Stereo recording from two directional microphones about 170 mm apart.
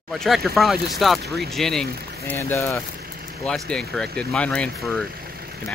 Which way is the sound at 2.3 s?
15° left (ahead or behind).